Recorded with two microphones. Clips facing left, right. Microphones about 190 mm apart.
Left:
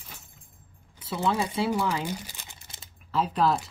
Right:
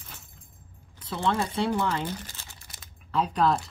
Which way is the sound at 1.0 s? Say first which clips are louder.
Even; 5° left (ahead or behind).